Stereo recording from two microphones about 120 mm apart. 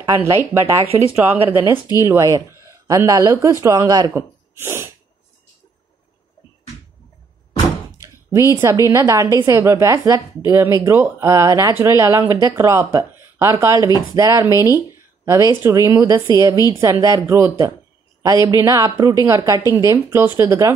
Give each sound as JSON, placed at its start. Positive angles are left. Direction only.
{"t": 0.2, "sound": "a woman's voice", "side_deg": -25}
{"t": 4.6, "sound": "sneeze", "side_deg": -20}
{"t": 8.0, "sound": "a woman's voice", "side_deg": -25}